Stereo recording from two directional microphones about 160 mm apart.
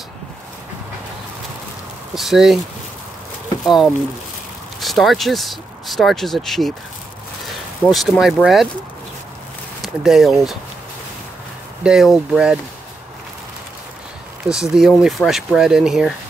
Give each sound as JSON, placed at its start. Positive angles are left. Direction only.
{"t": 2.1, "sound": "speech", "side_deg": 0}
{"t": 3.6, "sound": "speech", "side_deg": 0}
{"t": 7.8, "sound": "speech", "side_deg": 0}
{"t": 9.8, "sound": "speech", "side_deg": 0}
{"t": 11.8, "sound": "speech", "side_deg": -5}
{"t": 14.5, "sound": "speech", "side_deg": -5}